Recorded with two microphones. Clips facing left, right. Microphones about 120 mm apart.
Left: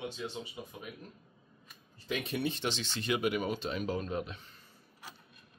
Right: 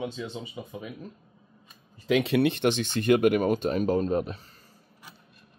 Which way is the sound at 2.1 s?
90° right.